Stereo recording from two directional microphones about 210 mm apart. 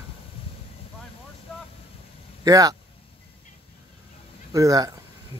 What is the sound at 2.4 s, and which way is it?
Speech, 15° right (ahead or behind).